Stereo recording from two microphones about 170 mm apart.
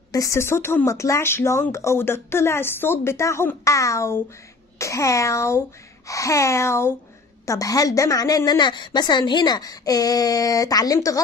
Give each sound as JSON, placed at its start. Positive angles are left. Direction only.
{"t": 0.1, "sound": "a woman's voice", "side_deg": 20}